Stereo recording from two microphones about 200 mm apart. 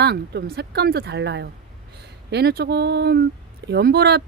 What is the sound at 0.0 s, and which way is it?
Speech, 55° right (ahead or behind).